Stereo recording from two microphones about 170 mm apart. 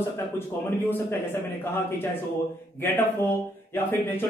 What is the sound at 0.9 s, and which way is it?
A man's voice, 10° left (ahead or behind).